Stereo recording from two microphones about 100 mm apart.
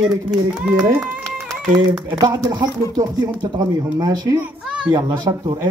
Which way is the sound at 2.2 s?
40° right (ahead or behind).